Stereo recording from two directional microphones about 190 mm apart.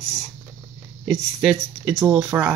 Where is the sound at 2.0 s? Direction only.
10° right (ahead or behind).